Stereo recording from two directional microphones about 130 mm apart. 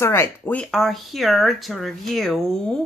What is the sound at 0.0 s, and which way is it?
Speech, 20° left (ahead or behind).